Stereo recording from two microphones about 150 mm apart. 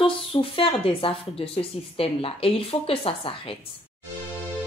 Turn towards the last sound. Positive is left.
turn(degrees=40)  # may be behind; listen again after turning